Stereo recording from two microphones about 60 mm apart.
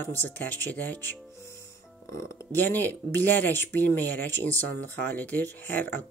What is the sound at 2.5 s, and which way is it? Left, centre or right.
Speech, left.